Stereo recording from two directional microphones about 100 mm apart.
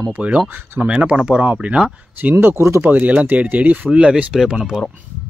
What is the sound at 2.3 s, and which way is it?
Speech, 25° right (ahead or behind).